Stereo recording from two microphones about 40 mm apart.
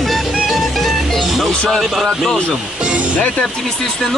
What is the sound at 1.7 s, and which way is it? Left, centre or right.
Speech, centre.